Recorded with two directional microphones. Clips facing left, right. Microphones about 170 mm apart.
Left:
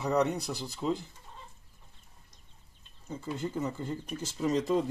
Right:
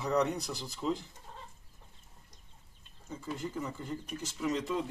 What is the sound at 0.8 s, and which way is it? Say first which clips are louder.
Speech: left 2 dB; 10° left (ahead or behind).